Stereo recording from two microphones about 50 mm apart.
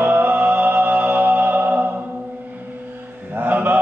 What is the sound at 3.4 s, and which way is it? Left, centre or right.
Mantra, right.